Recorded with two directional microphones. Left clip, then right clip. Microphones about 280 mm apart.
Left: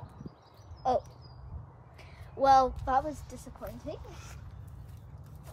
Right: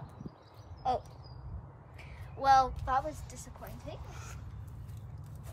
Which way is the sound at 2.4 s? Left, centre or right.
Left.